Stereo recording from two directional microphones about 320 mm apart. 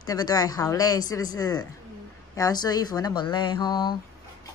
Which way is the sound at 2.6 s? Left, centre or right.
Centre.